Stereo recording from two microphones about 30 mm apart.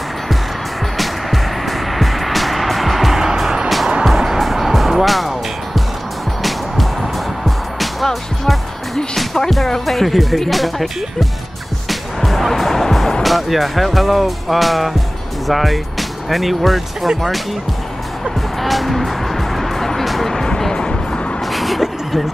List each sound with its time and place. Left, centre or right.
0.9 s music: centre
6.4 s music: centre
9.8 s speech: centre
11.9 s music: centre
13.2 s speech: centre
18.6 s music: centre
20.7 s vehicle: left
21.5 s vehicle: centre